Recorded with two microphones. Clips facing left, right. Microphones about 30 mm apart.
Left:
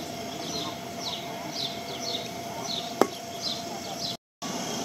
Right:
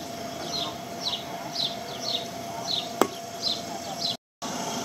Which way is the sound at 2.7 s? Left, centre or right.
Right.